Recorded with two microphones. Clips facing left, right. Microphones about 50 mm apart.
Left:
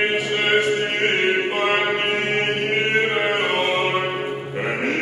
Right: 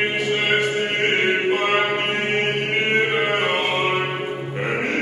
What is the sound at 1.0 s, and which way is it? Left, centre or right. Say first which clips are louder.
Chant: right 2 dB; centre.